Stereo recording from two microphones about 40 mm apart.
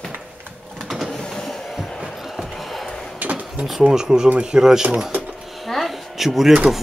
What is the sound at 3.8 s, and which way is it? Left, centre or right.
Speech, centre.